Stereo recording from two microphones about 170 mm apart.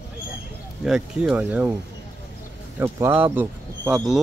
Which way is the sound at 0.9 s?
5° right (ahead or behind).